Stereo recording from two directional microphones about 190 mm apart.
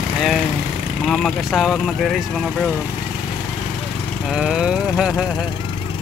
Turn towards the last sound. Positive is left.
turn(degrees=-5)  # may be behind; listen again after turning